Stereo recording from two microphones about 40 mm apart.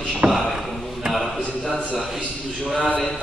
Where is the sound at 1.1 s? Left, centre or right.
Centre.